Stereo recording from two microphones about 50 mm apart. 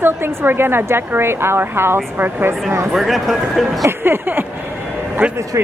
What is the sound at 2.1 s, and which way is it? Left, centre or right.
Speech, right.